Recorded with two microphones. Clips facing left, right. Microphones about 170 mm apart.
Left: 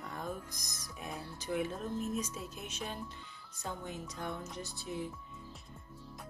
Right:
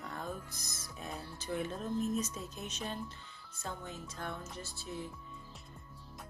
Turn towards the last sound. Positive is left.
turn(degrees=15)  # may be behind; listen again after turning